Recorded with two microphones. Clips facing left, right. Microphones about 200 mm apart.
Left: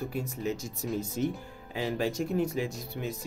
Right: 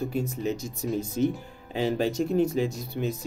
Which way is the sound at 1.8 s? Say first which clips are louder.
Right 5 dB; 25° right (ahead or behind).